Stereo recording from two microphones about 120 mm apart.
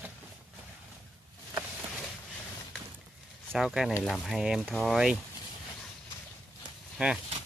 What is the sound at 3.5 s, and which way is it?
Speech, 5° right (ahead or behind).